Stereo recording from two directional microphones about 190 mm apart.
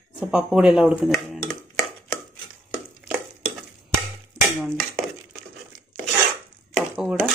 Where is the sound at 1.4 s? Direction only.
15° left (ahead or behind).